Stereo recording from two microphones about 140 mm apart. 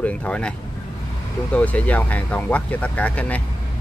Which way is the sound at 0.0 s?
10° left (ahead or behind).